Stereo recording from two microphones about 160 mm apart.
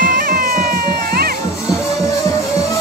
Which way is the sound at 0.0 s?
60° right (ahead or behind).